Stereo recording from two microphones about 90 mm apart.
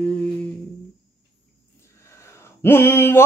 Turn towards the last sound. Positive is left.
turn(degrees=25)  # may be behind; listen again after turning